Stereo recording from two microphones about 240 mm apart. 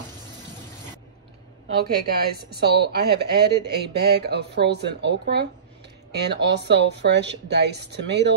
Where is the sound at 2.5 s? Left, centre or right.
Right.